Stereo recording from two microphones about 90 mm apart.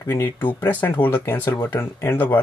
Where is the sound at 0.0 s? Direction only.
30° left (ahead or behind).